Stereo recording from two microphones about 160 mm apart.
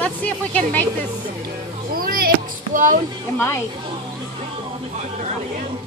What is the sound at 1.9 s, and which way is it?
Music, 65° right (ahead or behind).